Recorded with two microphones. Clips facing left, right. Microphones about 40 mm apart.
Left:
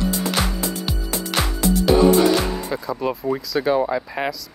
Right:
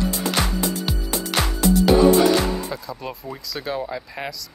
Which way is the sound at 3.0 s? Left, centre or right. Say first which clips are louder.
Left 9 dB; centre.